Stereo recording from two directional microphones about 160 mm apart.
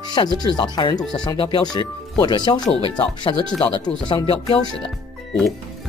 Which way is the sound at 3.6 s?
25° left (ahead or behind).